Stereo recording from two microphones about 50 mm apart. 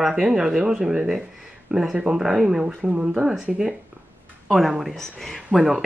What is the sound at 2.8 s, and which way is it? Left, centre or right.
Speech, right.